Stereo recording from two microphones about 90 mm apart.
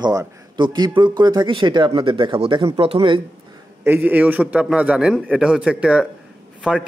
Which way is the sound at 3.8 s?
20° right (ahead or behind).